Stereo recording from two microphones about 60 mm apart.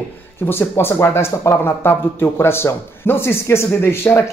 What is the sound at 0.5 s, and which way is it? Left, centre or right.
A man's voice, left.